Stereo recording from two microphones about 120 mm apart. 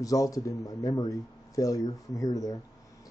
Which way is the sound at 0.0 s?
30° left (ahead or behind).